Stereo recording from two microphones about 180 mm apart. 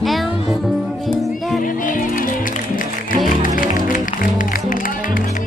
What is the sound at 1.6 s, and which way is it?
Music, 50° left (ahead or behind).